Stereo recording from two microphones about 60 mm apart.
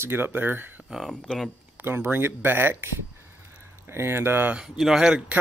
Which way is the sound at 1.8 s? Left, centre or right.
Right.